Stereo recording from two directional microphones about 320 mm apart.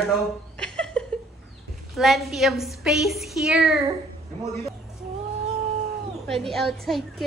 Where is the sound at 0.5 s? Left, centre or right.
Centre.